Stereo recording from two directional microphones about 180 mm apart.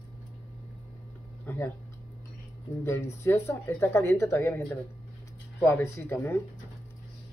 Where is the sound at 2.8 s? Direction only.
15° left (ahead or behind).